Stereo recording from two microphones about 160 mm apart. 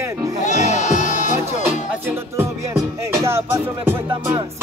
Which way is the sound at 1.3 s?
15° right (ahead or behind).